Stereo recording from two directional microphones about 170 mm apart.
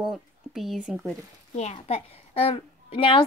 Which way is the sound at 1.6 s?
40° left (ahead or behind).